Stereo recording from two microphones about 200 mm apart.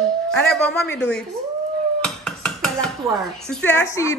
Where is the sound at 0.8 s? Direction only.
60° left (ahead or behind).